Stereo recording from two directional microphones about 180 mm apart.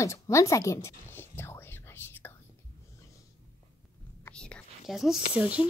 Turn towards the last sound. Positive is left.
turn(degrees=-5)  # may be behind; listen again after turning